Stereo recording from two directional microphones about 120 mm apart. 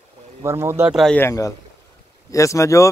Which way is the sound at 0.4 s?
20° right (ahead or behind).